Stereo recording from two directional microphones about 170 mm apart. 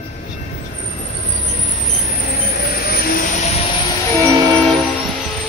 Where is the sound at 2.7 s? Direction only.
65° left (ahead or behind); by 3.6 s 40° left (ahead or behind).